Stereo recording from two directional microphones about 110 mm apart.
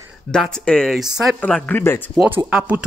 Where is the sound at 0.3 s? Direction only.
5° left (ahead or behind).